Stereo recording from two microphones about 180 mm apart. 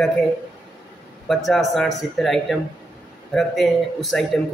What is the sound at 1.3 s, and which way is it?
A man's voice, centre (ahead or behind).